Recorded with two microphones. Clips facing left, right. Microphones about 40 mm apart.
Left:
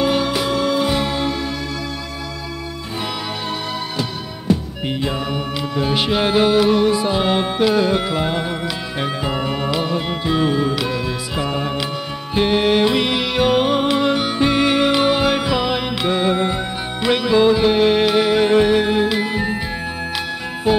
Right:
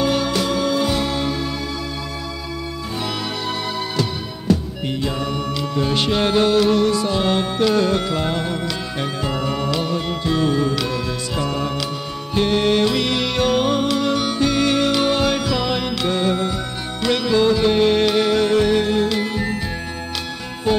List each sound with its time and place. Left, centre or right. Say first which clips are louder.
0.0 s music: left 1 dB; centre
4.8 s music: left 1 dB; centre
20.7 s music: left 2 dB; centre